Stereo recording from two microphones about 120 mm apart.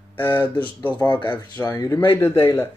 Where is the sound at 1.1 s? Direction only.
40° left (ahead or behind).